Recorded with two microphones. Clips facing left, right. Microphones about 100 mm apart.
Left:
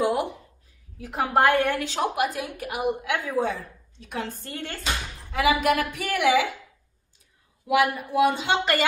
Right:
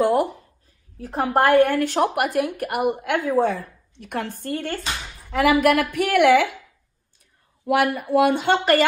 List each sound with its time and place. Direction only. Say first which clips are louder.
0.0 s a sound: right 5 dB; 40° right (ahead or behind)
0.9 s a woman's voice: right 2 dB; 40° right (ahead or behind); by 6.5 s 60° right (ahead or behind)
7.6 s a woman's voice: right 2 dB; 55° right (ahead or behind)